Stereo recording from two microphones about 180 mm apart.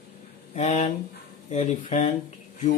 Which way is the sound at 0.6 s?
40° left (ahead or behind).